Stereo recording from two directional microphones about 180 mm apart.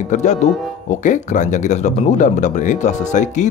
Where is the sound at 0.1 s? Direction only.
40° left (ahead or behind).